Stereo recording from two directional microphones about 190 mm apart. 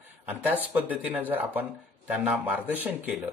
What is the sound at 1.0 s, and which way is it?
Speech, 10° right (ahead or behind).